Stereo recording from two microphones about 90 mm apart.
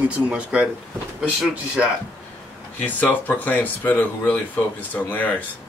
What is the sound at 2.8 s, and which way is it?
Speech, 20° left (ahead or behind).